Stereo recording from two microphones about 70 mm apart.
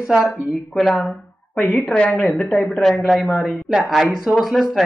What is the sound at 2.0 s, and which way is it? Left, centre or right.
Speech, centre.